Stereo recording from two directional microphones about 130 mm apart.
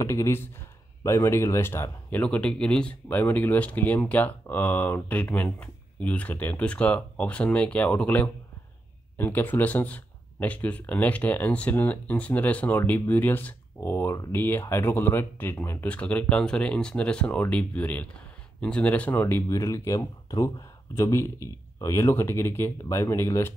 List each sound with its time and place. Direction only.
0.0 s speech: 25° left (ahead or behind)